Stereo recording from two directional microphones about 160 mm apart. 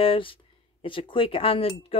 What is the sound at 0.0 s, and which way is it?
Speech, 35° left (ahead or behind).